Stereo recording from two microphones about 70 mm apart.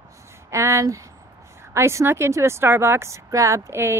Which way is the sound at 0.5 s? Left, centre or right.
Right.